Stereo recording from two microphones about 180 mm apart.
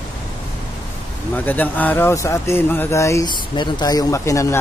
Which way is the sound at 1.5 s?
10° left (ahead or behind).